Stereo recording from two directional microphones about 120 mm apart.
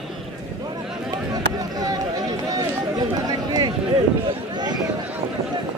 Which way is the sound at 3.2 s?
35° right (ahead or behind).